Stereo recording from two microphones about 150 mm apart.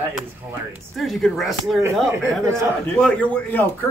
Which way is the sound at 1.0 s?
Centre (ahead or behind).